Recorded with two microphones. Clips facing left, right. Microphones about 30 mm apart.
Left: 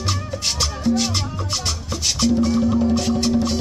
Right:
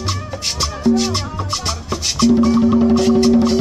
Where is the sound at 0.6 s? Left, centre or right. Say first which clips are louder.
Right 5 dB; centre.